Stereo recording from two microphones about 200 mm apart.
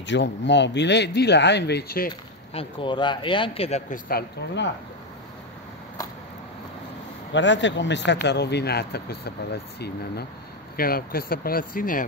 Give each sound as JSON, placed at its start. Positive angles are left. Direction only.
{"t": 0.0, "sound": "speech", "side_deg": 60}
{"t": 2.5, "sound": "speech", "side_deg": 25}
{"t": 4.1, "sound": "speech", "side_deg": 60}
{"t": 7.3, "sound": "speech", "side_deg": 65}